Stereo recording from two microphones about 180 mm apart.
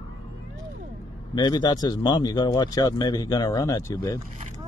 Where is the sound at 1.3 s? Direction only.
20° left (ahead or behind).